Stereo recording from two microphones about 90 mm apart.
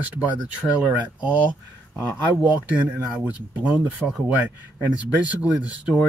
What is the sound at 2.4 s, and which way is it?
Speech, 15° right (ahead or behind).